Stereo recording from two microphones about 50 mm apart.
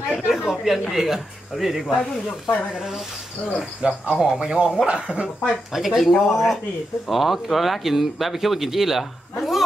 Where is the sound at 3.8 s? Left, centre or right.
Right.